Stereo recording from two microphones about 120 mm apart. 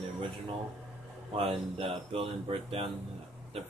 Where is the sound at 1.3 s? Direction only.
50° right (ahead or behind).